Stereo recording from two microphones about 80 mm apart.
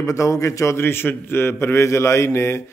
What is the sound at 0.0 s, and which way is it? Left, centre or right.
A man's voice, left.